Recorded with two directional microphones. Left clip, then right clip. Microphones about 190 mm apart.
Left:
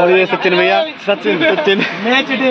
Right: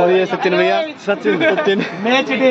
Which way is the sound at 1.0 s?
5° left (ahead or behind).